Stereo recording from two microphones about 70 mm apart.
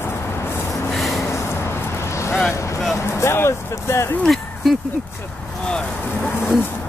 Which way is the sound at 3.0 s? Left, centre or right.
Left.